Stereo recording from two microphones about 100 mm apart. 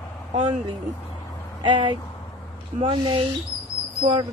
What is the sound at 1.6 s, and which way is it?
Speech, 55° right (ahead or behind).